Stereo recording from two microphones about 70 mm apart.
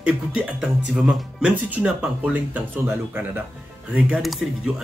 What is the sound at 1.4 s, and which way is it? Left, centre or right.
Speech, centre.